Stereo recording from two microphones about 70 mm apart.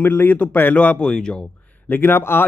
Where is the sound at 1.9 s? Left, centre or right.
Left.